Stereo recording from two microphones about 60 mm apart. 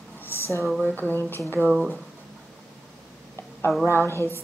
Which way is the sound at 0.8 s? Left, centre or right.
Left.